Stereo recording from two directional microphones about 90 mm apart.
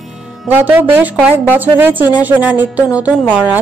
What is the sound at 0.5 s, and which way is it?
A woman's voice, 20° right (ahead or behind).